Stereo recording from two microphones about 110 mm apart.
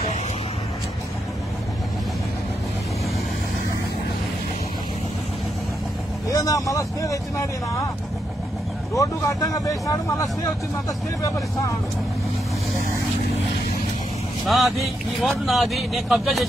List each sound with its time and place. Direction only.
6.3 s speech: 30° left (ahead or behind)
8.9 s speech: 30° left (ahead or behind)
14.4 s speech: centre (ahead or behind)